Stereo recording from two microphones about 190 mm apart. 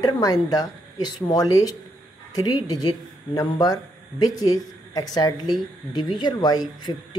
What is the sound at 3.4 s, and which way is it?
Speech, 20° left (ahead or behind).